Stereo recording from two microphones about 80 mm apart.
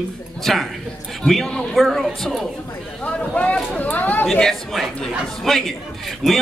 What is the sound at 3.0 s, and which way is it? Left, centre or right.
Speech, centre.